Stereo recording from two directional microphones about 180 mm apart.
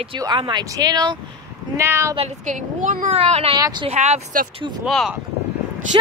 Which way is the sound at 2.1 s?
40° right (ahead or behind).